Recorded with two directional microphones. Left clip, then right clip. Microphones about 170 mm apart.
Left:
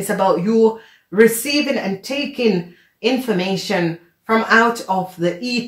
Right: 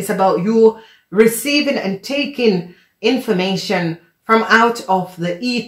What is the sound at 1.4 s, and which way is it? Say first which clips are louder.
Speech: right 2 dB; 30° right (ahead or behind).